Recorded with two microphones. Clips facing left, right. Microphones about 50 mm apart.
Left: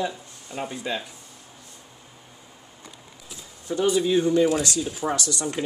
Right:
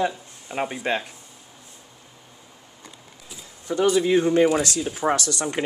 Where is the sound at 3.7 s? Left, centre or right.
Right.